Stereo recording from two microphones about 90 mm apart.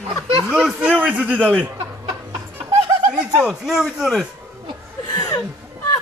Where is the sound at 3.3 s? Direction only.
Centre (ahead or behind).